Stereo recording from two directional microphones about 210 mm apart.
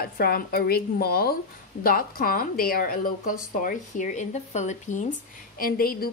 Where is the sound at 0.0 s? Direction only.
45° left (ahead or behind).